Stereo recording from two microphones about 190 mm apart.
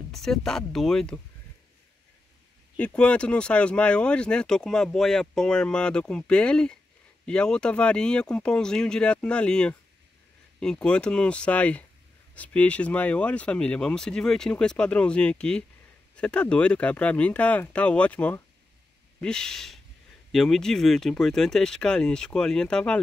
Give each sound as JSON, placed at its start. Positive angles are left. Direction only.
{"t": 0.1, "sound": "speech", "side_deg": 0}
{"t": 2.8, "sound": "speech", "side_deg": 5}